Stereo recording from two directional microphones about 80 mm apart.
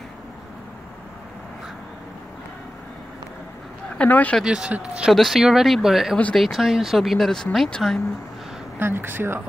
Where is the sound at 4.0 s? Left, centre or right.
Centre.